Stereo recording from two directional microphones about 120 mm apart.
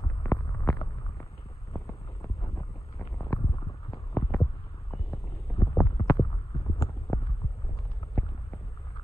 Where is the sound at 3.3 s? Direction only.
35° left (ahead or behind).